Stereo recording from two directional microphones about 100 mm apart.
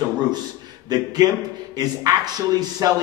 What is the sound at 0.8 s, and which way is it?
A man's voice, 40° right (ahead or behind).